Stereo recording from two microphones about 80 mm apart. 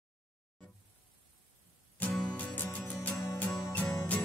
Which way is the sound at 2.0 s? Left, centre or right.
Left.